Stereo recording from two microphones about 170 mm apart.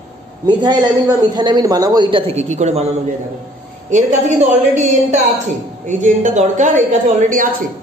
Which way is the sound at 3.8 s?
45° right (ahead or behind).